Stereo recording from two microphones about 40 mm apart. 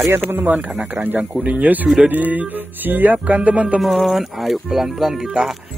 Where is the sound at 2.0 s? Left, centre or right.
Right.